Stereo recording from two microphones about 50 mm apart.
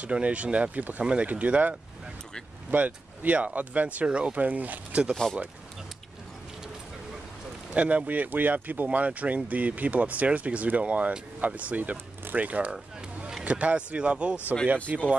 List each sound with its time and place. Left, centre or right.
0.0 s speech: right
4.4 s speech: right
5.1 s speech: centre
7.7 s speech: right